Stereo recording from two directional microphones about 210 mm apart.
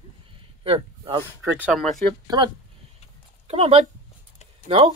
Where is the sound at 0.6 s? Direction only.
25° right (ahead or behind).